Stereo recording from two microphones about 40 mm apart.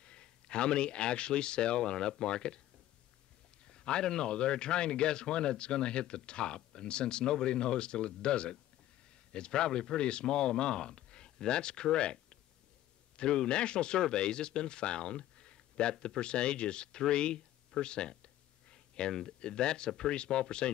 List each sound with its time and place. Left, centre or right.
0.0 s a man's voice: left
3.6 s a man's voice: left